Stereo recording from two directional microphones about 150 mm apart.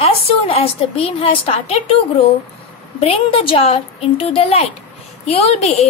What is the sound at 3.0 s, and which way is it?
A woman's voice, 40° left (ahead or behind).